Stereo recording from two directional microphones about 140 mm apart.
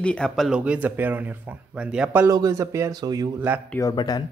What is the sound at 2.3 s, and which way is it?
Speech, 25° right (ahead or behind).